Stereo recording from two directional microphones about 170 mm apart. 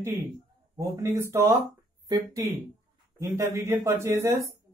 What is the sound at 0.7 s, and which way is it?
Speech, 20° right (ahead or behind).